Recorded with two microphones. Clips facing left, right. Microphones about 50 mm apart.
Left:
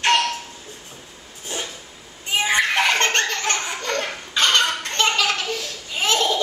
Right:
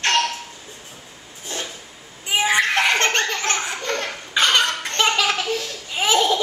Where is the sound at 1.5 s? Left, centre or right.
Centre.